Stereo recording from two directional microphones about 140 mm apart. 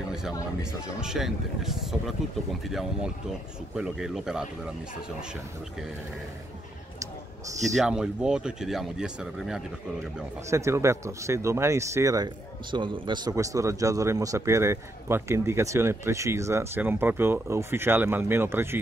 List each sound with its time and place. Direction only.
0.6 s speech: 5° right (ahead or behind)
7.7 s speech: 5° right (ahead or behind)
10.5 s speech: 20° right (ahead or behind)
12.7 s speech: 35° right (ahead or behind); by 18.8 s 15° right (ahead or behind)